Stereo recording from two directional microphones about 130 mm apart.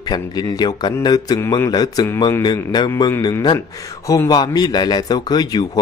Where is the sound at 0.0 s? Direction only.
30° left (ahead or behind).